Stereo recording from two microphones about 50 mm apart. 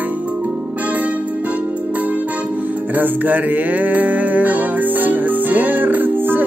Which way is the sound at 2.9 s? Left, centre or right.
Right.